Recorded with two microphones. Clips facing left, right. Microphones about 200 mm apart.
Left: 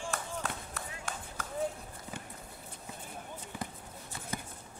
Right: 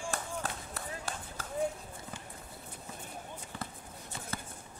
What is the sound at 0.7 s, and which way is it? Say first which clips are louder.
Run: right 1 dB; 35° right (ahead or behind).